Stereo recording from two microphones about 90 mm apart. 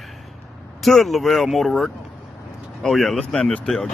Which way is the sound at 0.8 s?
Centre (ahead or behind).